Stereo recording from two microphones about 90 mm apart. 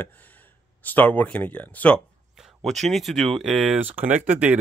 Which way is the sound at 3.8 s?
20° right (ahead or behind).